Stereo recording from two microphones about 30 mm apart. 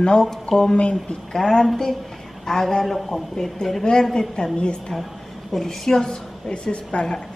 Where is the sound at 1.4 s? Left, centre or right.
Left.